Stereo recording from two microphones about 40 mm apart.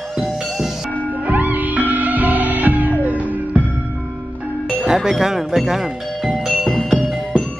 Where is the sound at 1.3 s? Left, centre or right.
Right.